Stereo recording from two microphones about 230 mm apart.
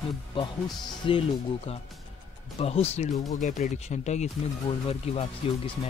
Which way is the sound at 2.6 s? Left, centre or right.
Left.